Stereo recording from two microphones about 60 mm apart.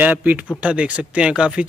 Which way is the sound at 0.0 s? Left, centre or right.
Right.